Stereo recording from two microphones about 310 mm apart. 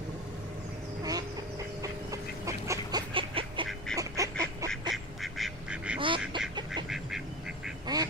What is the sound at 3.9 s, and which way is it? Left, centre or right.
Duck, centre.